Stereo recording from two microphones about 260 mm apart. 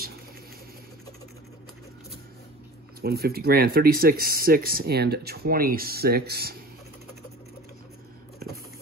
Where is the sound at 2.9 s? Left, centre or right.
Right.